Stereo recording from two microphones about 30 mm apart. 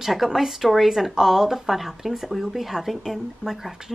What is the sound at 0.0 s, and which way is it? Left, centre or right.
A woman's voice, centre.